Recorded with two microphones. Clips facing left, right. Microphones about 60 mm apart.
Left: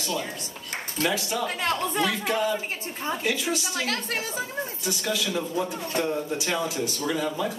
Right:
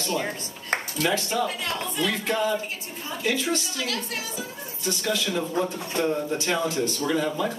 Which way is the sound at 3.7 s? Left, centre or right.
Left.